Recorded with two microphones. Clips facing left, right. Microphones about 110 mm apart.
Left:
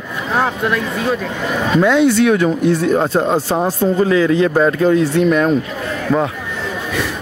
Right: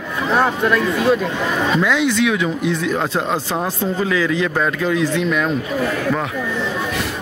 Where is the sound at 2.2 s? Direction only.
45° left (ahead or behind).